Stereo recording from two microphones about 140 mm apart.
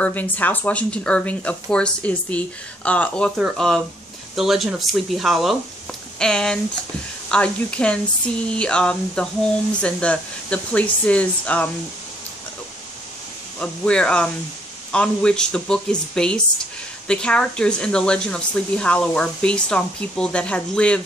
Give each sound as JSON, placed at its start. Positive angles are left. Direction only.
{"t": 0.0, "sound": "speech", "side_deg": 10}
{"t": 13.6, "sound": "speech", "side_deg": 5}